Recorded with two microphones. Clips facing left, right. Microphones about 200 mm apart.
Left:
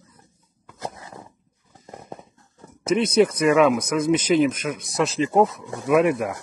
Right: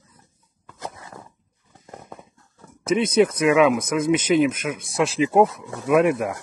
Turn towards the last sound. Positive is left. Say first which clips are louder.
# even
turn(degrees=0)  # may be behind; listen again after turning